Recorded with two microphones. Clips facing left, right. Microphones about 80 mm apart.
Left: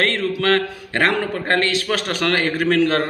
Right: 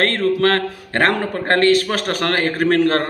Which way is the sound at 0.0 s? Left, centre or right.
Right.